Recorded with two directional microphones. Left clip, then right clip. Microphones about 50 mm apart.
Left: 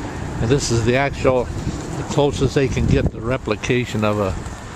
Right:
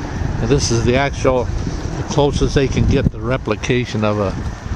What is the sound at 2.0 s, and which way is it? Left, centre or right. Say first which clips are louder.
Speech: right 2 dB; right.